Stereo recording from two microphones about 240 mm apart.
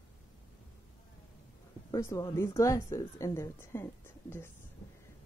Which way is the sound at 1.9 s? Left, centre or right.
Centre.